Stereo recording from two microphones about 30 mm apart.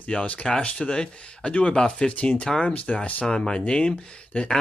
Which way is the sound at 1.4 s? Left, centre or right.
Left.